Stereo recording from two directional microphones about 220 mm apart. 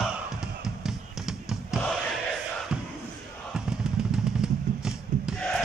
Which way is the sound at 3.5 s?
5° right (ahead or behind).